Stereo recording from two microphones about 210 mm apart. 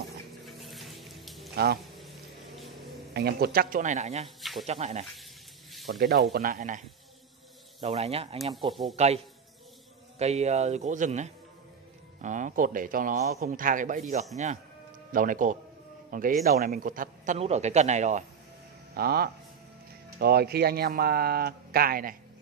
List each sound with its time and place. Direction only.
0.6 s a sound: centre (ahead or behind)
3.1 s speech: 50° right (ahead or behind); by 4.3 s 30° right (ahead or behind)
4.4 s snake: centre (ahead or behind)
4.6 s speech: 30° right (ahead or behind)
5.9 s speech: 45° right (ahead or behind)
7.8 s speech: 30° right (ahead or behind)
18.9 s speech: 45° right (ahead or behind)